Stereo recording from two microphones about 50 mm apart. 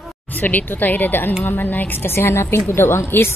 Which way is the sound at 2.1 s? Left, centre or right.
Left.